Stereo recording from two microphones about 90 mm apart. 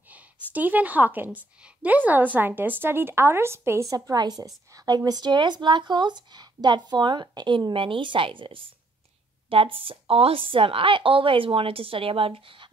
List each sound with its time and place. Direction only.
0.5 s a woman's voice: 20° right (ahead or behind); by 8.6 s 70° right (ahead or behind)
9.5 s a woman's voice: 90° right